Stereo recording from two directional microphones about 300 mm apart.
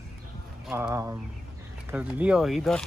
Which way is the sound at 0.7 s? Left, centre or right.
Centre.